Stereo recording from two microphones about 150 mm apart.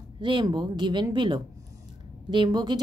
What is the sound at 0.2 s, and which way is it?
A woman's voice, 30° right (ahead or behind).